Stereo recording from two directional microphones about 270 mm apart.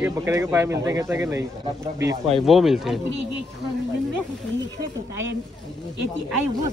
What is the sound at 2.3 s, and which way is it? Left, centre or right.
Speech, centre.